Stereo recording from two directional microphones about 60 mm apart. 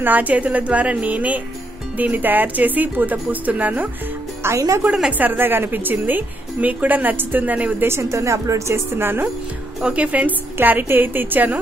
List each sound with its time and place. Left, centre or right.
0.0 s a woman's voice: right
4.4 s speech: right
5.1 s a woman's voice: right
8.0 s a woman's voice: right
9.8 s a woman's voice: right